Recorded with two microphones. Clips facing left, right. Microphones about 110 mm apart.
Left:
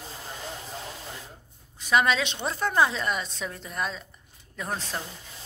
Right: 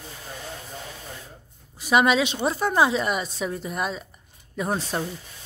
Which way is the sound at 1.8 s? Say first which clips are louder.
Right 4 dB; 15° right (ahead or behind).